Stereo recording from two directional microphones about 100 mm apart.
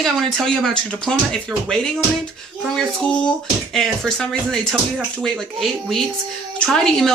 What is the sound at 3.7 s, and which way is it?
Speech, 5° left (ahead or behind).